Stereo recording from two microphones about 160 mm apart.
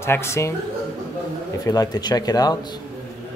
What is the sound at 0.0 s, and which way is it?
Speech, 15° left (ahead or behind).